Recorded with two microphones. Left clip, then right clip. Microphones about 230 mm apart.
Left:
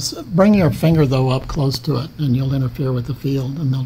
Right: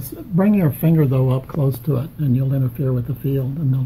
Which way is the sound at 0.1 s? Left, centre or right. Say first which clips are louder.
Left 4 dB; left.